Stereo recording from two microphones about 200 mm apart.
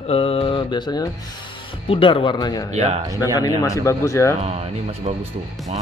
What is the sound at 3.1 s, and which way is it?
Speech, 15° left (ahead or behind).